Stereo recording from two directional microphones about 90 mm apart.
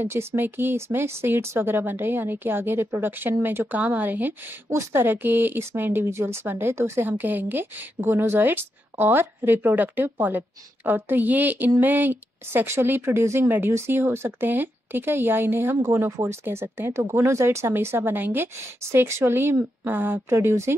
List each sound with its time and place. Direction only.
0.0 s a woman's voice: 25° right (ahead or behind)